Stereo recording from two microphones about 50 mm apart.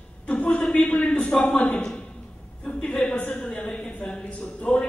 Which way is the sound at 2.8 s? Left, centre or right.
Left.